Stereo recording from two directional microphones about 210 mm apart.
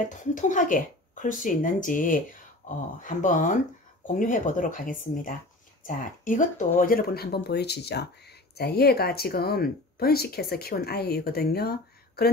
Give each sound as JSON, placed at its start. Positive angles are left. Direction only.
{"t": 0.1, "sound": "speech", "side_deg": 35}